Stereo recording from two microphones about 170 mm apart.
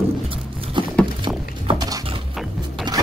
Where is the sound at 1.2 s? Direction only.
25° right (ahead or behind).